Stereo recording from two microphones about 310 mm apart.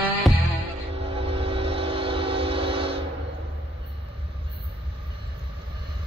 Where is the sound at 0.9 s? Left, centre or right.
Centre.